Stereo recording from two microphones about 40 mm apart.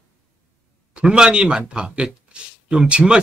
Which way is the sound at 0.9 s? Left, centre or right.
Right.